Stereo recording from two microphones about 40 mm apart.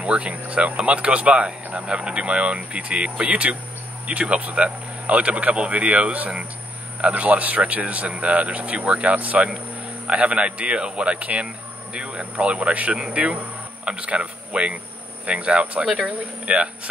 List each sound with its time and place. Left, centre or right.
0.0 s speech: right
10.0 s speech: right
15.8 s speech: centre
16.5 s speech: right